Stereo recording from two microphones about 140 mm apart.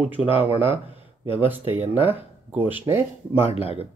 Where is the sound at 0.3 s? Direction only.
15° right (ahead or behind).